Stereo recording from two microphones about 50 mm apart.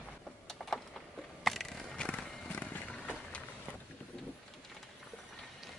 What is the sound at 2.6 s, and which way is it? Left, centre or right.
Vehicle, left.